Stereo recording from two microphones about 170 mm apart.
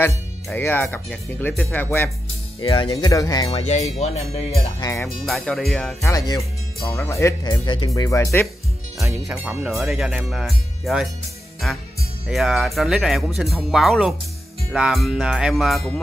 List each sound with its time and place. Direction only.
0.5 s speech: 10° left (ahead or behind)
2.6 s speech: 30° left (ahead or behind)
3.4 s speech: 40° left (ahead or behind)
4.7 s speech: 20° left (ahead or behind)
5.2 s speech: centre (ahead or behind)
6.0 s speech: 20° left (ahead or behind)
9.3 s speech: 10° right (ahead or behind)
12.3 s speech: centre (ahead or behind)